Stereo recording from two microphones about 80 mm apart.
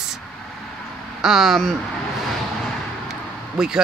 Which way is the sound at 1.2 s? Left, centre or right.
Centre.